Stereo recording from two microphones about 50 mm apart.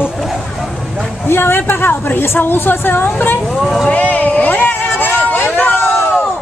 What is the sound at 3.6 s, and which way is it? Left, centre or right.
Speech, centre.